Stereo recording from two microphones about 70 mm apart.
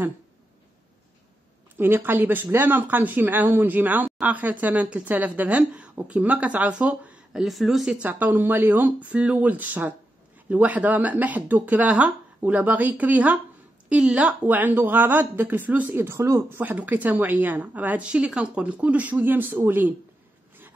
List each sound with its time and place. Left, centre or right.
1.8 s speech: right
7.3 s speech: centre
8.0 s speech: right
16.0 s speech: right
16.4 s speech: right